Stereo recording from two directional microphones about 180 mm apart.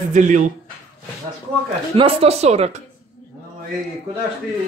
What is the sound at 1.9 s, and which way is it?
Speech, 30° right (ahead or behind).